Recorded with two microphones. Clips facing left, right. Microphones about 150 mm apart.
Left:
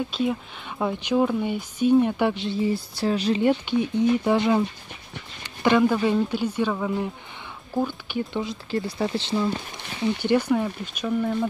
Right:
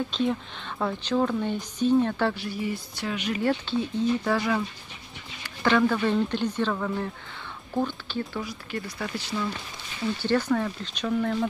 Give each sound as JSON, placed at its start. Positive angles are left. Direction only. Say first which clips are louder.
{"t": 0.1, "sound": "speech", "louder": "left 1 dB", "side_deg": 5}
{"t": 3.4, "sound": "speech", "louder": "left 1 dB", "side_deg": 15}
{"t": 10.0, "sound": "speech", "louder": "left 3 dB", "side_deg": 15}